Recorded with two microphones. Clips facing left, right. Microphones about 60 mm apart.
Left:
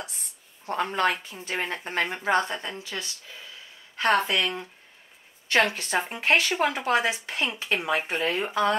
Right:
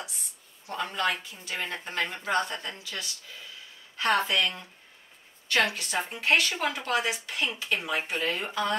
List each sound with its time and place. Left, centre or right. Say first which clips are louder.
0.7 s speech: left 4 dB; left
3.9 s a sound: left 3 dB; left
4.3 s speech: left 1 dB; left
5.7 s speech: left 4 dB; left